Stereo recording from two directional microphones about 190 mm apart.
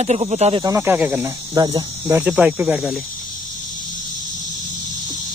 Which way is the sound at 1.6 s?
20° right (ahead or behind).